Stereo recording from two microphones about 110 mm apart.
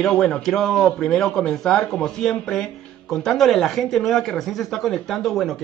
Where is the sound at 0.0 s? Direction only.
5° left (ahead or behind).